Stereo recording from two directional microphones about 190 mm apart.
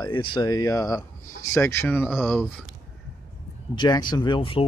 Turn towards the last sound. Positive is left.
turn(degrees=30)  # may be behind; listen again after turning